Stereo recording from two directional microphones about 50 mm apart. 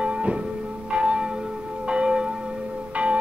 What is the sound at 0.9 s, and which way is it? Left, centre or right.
Church bell, centre.